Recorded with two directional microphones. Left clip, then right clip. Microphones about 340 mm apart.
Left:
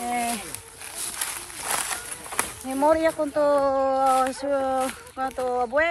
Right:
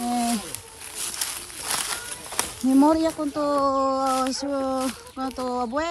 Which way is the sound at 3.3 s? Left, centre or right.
Centre.